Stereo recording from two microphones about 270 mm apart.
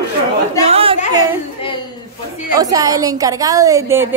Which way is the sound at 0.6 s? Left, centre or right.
Right.